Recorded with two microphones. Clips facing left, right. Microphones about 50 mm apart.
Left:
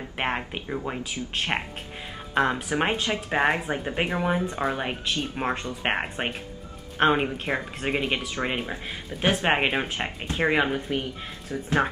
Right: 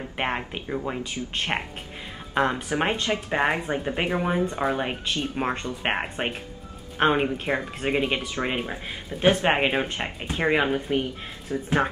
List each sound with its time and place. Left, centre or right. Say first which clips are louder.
0.2 s speech: even; centre
11.5 s speech: right 3 dB; centre